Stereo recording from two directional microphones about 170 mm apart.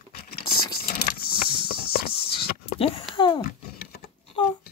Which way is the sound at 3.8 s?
65° left (ahead or behind).